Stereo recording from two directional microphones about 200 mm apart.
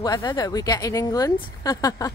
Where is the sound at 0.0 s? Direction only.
20° left (ahead or behind).